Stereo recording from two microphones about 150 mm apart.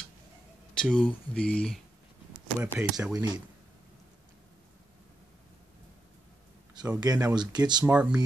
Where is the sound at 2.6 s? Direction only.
15° right (ahead or behind).